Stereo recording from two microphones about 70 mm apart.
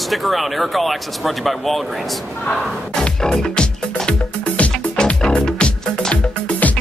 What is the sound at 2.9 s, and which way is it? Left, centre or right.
Music, centre.